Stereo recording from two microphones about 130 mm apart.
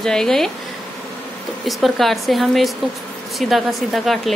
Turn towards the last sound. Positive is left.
turn(degrees=0)  # may be behind; listen again after turning